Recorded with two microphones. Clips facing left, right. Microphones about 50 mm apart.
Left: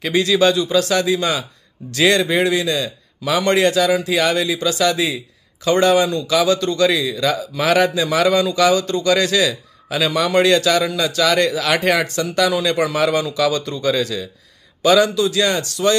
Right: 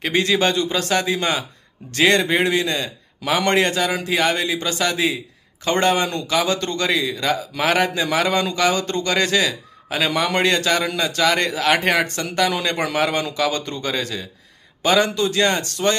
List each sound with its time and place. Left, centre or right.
0.0 s a man's voice: right